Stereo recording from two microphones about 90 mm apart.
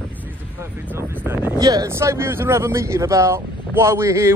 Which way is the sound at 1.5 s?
45° right (ahead or behind).